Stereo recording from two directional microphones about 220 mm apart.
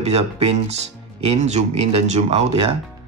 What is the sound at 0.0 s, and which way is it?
Speech, 30° right (ahead or behind).